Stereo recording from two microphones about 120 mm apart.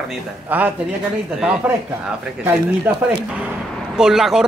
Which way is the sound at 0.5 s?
15° right (ahead or behind).